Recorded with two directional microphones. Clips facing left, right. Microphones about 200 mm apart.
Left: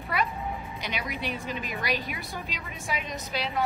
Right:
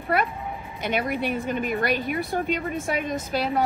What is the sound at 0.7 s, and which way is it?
A woman's voice, 50° right (ahead or behind).